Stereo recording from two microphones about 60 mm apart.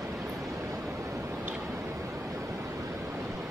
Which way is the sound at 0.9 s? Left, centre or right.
Right.